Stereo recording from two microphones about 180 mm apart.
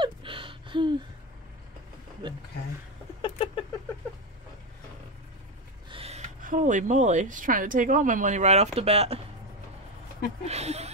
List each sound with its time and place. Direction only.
0.0 s a sound: 30° right (ahead or behind)
2.2 s speech: 30° right (ahead or behind)
3.2 s rodents: 25° left (ahead or behind)
5.9 s speech: 35° right (ahead or behind)
10.4 s speech: 35° right (ahead or behind)